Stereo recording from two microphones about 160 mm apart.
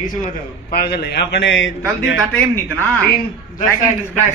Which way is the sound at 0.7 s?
80° left.